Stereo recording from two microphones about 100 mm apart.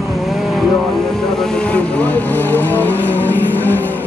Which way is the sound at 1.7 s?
15° left (ahead or behind).